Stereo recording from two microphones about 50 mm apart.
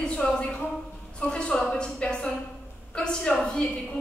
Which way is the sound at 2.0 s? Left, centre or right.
Left.